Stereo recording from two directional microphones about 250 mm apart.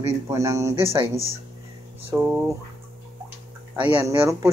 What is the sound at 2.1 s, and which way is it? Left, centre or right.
Speech, centre.